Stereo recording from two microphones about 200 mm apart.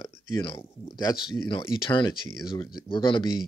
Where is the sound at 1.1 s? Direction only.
5° right (ahead or behind).